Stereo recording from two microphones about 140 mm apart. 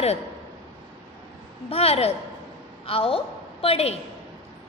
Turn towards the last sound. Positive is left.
turn(degrees=45)  # may be behind; listen again after turning